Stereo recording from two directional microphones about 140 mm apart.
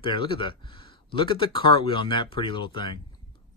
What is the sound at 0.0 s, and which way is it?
Speech, 40° left (ahead or behind).